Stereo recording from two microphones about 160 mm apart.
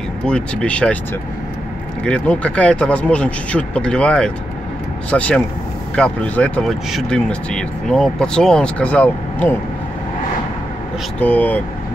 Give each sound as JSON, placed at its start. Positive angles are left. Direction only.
{"t": 0.3, "sound": "speech", "side_deg": 5}
{"t": 2.0, "sound": "speech", "side_deg": 10}
{"t": 11.1, "sound": "speech", "side_deg": 10}